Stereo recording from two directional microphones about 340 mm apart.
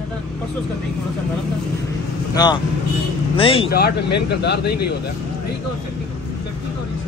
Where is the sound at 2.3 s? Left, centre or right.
Centre.